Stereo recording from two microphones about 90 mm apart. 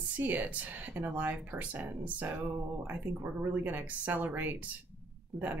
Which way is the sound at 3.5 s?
20° right (ahead or behind).